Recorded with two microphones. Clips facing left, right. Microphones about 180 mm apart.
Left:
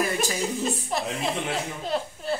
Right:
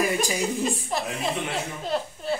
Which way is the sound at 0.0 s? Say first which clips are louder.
Right 2 dB; 10° right (ahead or behind).